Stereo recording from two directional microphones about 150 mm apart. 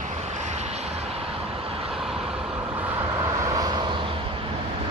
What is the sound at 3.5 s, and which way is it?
Vehicle, 25° right (ahead or behind).